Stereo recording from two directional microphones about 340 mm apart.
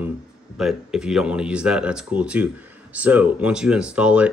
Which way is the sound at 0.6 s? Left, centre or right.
Centre.